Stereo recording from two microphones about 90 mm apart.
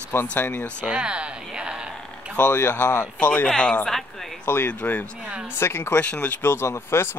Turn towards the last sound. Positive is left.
turn(degrees=30)  # may be behind; listen again after turning